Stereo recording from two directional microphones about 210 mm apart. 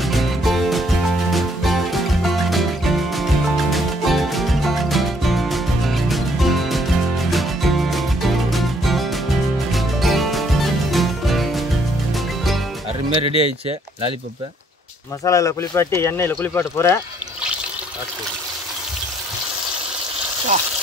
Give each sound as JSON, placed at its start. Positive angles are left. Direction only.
{"t": 0.0, "sound": "music", "side_deg": 0}
{"t": 13.2, "sound": "speech", "side_deg": -30}
{"t": 15.2, "sound": "speech", "side_deg": 15}